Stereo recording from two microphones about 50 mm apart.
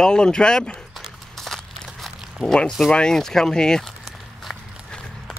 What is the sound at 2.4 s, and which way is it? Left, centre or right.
Speech, left.